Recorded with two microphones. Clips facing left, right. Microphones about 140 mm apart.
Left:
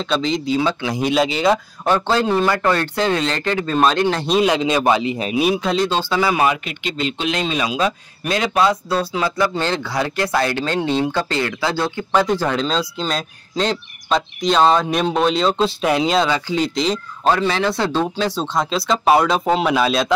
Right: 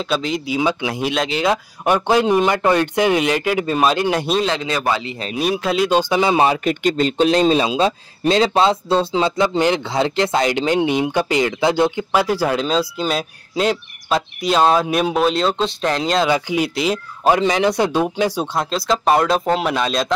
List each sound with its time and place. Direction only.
0.0 s speech: 5° right (ahead or behind)
0.9 s speech: centre (ahead or behind)
1.9 s speech: 15° right (ahead or behind)
4.4 s speech: 15° left (ahead or behind)
5.3 s speech: centre (ahead or behind)
5.9 s a man's voice: 15° right (ahead or behind)
6.6 s a man's voice: 45° right (ahead or behind); by 11.9 s 20° right (ahead or behind)
12.1 s speech: 10° right (ahead or behind)
16.3 s speech: 10° right (ahead or behind); by 20.2 s 5° left (ahead or behind)